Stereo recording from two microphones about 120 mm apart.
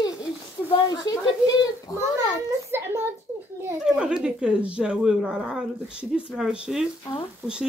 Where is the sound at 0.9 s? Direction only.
30° left (ahead or behind).